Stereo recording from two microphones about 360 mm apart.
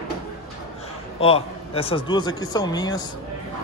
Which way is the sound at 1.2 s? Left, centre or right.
Centre.